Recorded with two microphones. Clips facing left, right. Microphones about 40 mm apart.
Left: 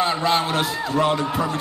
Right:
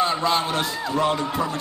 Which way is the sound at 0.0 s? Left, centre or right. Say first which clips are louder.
Left 1 dB; centre.